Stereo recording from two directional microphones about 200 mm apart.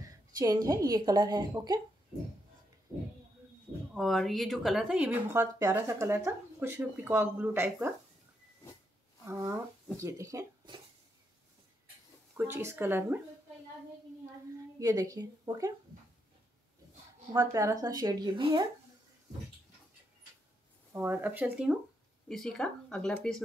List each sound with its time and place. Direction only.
0.4 s a woman's voice: 15° right (ahead or behind)
3.9 s speech: centre (ahead or behind)
9.2 s speech: 15° right (ahead or behind)
12.4 s speech: 10° right (ahead or behind)
14.8 s speech: 20° right (ahead or behind)
17.3 s speech: 15° right (ahead or behind)
20.9 s speech: 10° right (ahead or behind)